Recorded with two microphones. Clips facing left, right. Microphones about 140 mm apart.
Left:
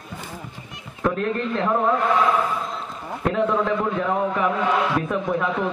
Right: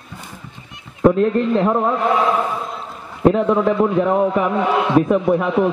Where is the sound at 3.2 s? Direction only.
25° right (ahead or behind).